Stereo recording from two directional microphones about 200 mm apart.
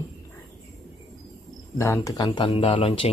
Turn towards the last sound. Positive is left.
turn(degrees=25)  # may be behind; listen again after turning